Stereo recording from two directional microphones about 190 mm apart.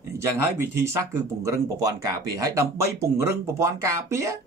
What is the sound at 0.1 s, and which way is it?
Speech, 15° right (ahead or behind).